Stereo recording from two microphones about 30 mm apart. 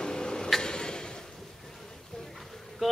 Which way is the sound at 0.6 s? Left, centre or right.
Left.